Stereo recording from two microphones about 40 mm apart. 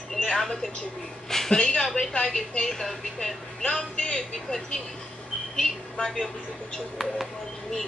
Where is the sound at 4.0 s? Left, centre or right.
Centre.